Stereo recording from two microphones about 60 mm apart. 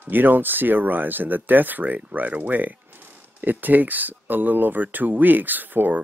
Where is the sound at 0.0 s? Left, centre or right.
Right.